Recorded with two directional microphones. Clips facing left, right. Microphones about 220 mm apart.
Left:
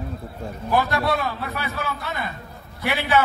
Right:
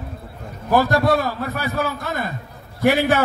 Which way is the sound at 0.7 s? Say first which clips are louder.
Right 5 dB; 45° right (ahead or behind).